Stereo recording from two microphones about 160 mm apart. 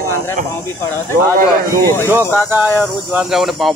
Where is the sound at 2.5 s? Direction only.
10° right (ahead or behind).